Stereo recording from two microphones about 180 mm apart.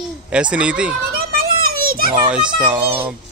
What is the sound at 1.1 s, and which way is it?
Children playing, 55° right (ahead or behind).